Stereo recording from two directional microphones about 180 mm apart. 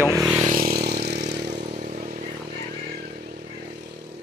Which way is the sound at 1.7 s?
45° right (ahead or behind).